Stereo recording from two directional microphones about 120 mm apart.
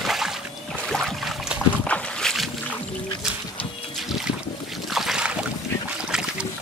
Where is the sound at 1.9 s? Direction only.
Centre (ahead or behind).